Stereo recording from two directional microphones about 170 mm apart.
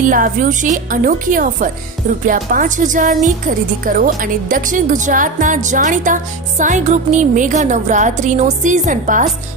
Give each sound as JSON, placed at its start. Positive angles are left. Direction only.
{"t": 0.0, "sound": "a woman's voice", "side_deg": -50}